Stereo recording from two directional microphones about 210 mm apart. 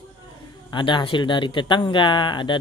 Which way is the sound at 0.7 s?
20° left (ahead or behind).